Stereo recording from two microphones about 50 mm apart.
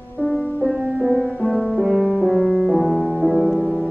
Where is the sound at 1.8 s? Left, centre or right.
Centre.